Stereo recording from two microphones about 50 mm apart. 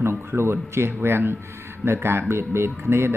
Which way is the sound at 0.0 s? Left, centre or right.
Right.